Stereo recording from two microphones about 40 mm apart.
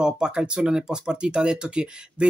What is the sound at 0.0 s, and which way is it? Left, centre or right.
Speech, centre.